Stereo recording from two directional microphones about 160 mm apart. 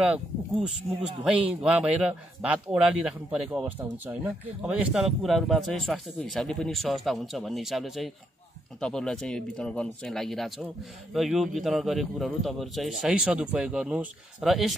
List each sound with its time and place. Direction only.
0.0 s speech: 5° right (ahead or behind)